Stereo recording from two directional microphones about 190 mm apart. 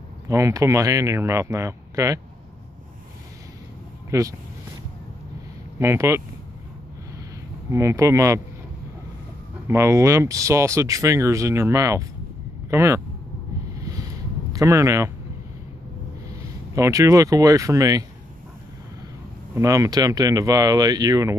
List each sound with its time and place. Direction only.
0.3 s speech: 15° right (ahead or behind)
4.1 s speech: 15° right (ahead or behind)
5.8 s speech: 15° right (ahead or behind)
7.7 s speech: 15° right (ahead or behind)
9.7 s speech: 15° right (ahead or behind)
14.5 s speech: 15° right (ahead or behind)
16.7 s speech: 15° right (ahead or behind)
19.5 s speech: 15° right (ahead or behind)